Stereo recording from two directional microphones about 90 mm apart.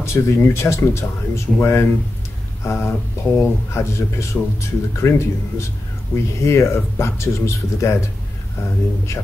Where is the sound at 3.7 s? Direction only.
30° left (ahead or behind).